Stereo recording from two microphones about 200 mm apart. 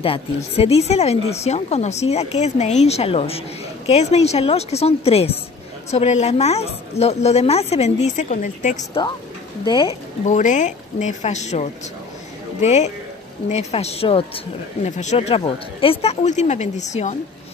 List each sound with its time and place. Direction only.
0.0 s speech: 30° left (ahead or behind)
9.7 s speech: 20° left (ahead or behind)
10.2 s speech: 40° left (ahead or behind)